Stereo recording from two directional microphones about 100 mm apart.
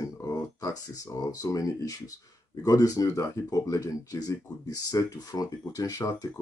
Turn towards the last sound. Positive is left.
turn(degrees=35)  # may be behind; listen again after turning